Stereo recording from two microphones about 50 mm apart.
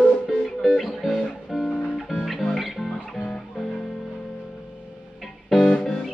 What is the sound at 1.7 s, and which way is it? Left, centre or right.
Music, centre.